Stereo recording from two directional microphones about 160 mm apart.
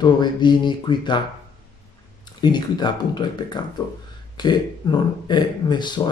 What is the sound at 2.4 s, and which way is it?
Speech, 25° left (ahead or behind).